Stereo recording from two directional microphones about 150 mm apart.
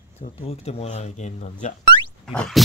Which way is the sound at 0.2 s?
40° left (ahead or behind).